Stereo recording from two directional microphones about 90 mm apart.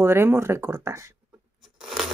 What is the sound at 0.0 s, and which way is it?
Speech, 30° right (ahead or behind).